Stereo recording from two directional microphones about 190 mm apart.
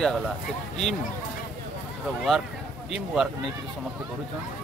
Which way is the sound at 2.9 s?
Centre (ahead or behind).